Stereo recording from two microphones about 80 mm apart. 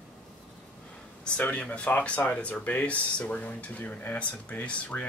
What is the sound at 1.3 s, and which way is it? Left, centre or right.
Speech, centre.